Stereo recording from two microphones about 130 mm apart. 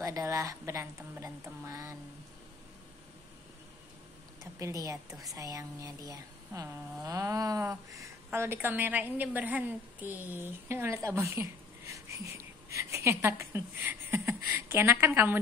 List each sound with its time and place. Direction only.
0.0 s speech: 25° right (ahead or behind)
4.4 s speech: 25° right (ahead or behind)